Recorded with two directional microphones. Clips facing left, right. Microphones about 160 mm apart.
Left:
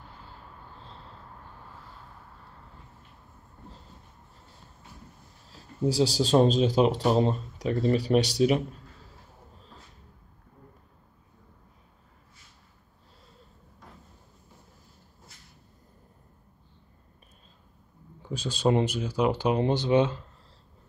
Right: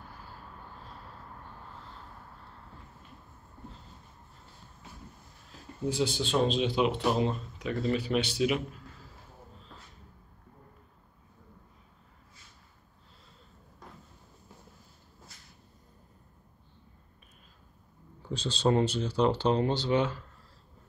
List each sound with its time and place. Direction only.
5.9 s speech: 35° left (ahead or behind)
18.3 s speech: 10° left (ahead or behind)